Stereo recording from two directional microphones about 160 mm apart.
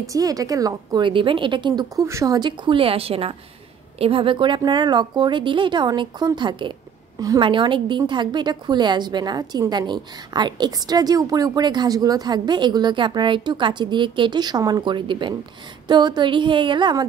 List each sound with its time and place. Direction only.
0.1 s a woman's voice: 20° right (ahead or behind)